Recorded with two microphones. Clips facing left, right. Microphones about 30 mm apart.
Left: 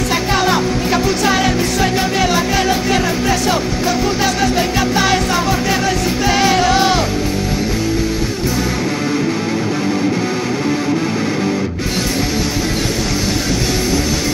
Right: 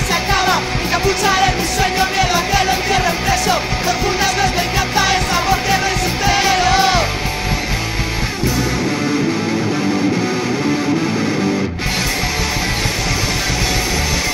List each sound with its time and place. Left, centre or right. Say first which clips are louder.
0.1 s music: right 1 dB; centre
12.5 s music: left 1 dB; centre
13.0 s music: left 1 dB; centre